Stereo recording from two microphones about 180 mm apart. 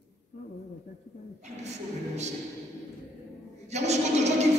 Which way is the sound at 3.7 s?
40° right (ahead or behind).